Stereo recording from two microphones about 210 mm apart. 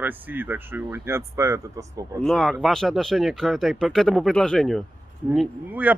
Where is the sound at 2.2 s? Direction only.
Centre (ahead or behind).